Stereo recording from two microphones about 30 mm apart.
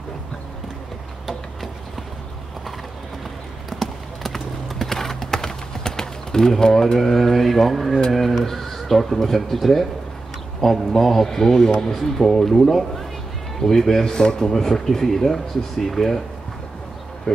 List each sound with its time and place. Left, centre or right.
3.8 s clip-clop: centre
7.0 s speech: centre; by 14.5 s left
14.5 s speech: centre